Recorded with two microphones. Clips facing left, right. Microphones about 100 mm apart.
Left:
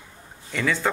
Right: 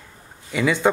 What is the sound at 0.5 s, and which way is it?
Speech, 15° right (ahead or behind).